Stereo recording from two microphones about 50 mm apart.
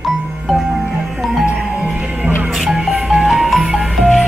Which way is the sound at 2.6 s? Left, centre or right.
Centre.